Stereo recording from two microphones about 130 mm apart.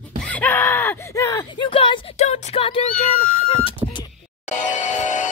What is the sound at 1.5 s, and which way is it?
Speech, 40° left (ahead or behind).